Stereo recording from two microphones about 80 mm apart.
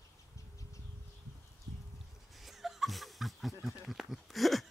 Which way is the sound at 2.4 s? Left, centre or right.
Centre.